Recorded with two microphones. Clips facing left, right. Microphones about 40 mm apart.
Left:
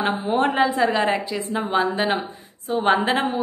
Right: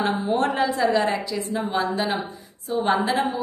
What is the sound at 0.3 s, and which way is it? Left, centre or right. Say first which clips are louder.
A woman's voice: left 4 dB; left.